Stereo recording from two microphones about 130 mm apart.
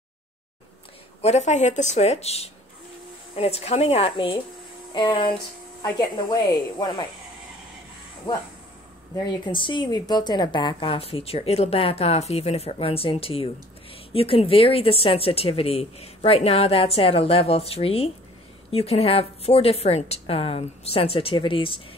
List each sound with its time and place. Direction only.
1.2 s speech: 60° left (ahead or behind); by 7.1 s 35° left (ahead or behind)
8.3 s speech: 35° left (ahead or behind)